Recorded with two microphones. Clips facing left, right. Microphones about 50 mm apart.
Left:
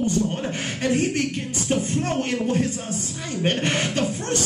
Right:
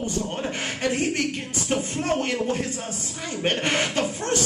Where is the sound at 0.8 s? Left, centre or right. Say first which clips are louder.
Left 3 dB; right.